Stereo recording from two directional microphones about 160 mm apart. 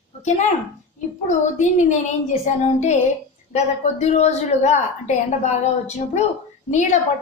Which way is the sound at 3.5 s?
45° left (ahead or behind).